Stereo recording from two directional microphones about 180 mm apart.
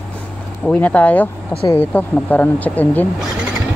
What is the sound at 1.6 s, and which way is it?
Speech, 20° left (ahead or behind).